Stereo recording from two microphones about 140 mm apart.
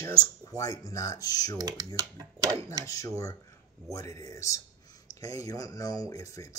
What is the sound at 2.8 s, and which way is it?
Speech, 25° left (ahead or behind).